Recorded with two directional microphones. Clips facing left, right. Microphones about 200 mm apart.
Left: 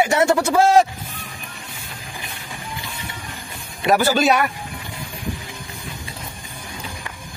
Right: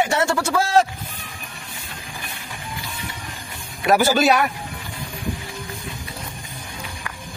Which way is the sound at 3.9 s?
5° right (ahead or behind).